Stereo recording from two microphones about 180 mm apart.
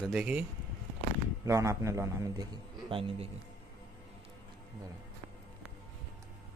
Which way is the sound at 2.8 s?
30° right (ahead or behind).